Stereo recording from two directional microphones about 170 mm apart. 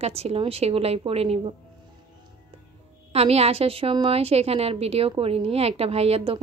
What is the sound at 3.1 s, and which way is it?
A woman's voice, 35° right (ahead or behind).